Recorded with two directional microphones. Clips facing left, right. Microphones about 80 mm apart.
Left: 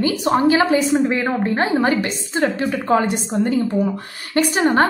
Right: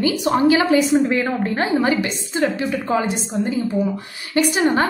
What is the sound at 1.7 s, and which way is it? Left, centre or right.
A woman's voice, left.